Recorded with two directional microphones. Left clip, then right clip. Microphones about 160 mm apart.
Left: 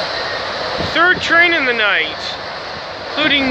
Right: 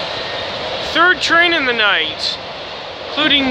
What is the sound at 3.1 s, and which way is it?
Speech, 20° right (ahead or behind).